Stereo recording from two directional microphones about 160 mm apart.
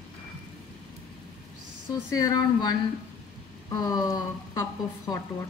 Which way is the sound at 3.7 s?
25° left (ahead or behind).